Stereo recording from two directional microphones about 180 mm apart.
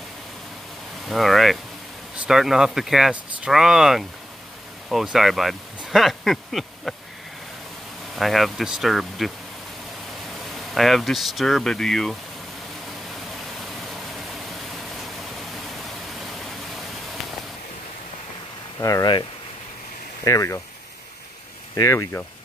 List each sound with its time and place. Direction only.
1.0 s speech: centre (ahead or behind)
8.2 s speech: centre (ahead or behind)
10.5 s speech: centre (ahead or behind)
16.3 s a sound: centre (ahead or behind)
18.8 s speech: 20° left (ahead or behind)
20.2 s speech: 20° left (ahead or behind)
21.7 s speech: 15° left (ahead or behind)